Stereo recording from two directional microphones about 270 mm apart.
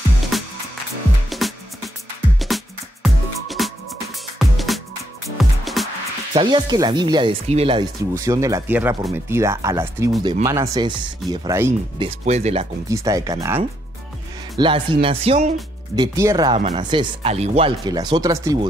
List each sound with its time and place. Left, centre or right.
0.3 s music: centre
6.3 s speech: centre
12.1 s speech: right
12.9 s speech: centre
16.0 s speech: centre